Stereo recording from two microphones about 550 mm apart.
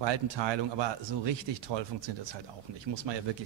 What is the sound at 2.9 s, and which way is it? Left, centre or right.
Speech, right.